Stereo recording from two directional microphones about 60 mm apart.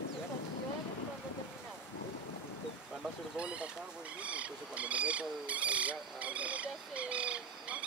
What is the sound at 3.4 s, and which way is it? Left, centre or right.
Speech, centre.